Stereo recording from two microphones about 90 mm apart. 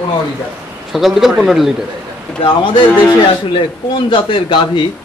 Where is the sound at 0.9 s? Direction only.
Centre (ahead or behind).